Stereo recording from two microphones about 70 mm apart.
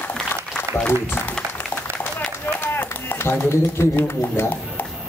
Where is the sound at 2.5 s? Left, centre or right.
Left.